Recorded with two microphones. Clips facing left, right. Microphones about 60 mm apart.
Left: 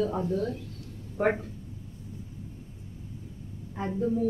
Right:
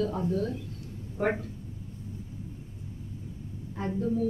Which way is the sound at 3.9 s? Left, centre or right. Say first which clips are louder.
Left 1 dB; centre.